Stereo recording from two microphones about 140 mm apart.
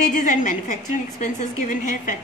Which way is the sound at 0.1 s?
65° left (ahead or behind).